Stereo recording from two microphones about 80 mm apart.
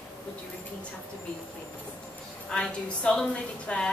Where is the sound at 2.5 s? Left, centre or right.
Centre.